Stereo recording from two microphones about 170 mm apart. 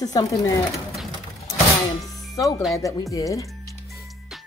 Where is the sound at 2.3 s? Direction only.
20° left (ahead or behind).